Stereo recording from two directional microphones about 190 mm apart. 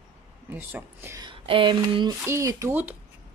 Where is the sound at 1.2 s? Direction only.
25° right (ahead or behind).